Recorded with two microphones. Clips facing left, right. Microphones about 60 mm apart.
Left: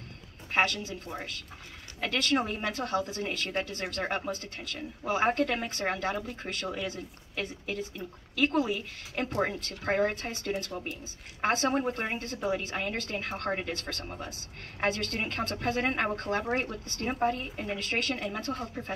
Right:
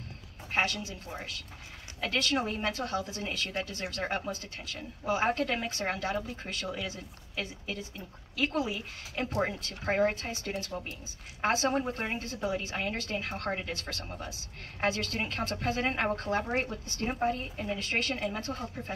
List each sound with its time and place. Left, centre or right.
2.0 s speech: left